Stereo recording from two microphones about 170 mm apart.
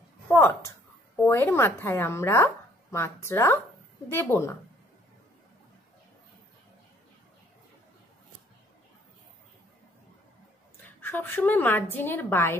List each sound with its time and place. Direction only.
0.3 s a woman's voice: 15° left (ahead or behind)
11.0 s a woman's voice: 10° left (ahead or behind)